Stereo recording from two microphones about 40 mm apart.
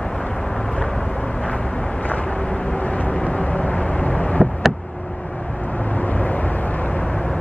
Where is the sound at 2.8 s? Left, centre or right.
Left.